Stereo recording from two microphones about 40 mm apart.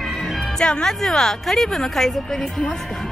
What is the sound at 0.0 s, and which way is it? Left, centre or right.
Music, centre.